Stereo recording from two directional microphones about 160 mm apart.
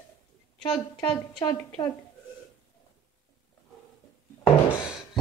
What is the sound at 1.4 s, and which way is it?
Speech, 20° left (ahead or behind).